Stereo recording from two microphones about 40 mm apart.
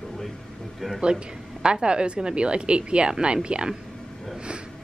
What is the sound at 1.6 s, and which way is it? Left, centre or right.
A woman's voice, right.